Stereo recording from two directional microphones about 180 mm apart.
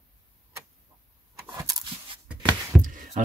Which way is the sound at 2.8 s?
45° right (ahead or behind).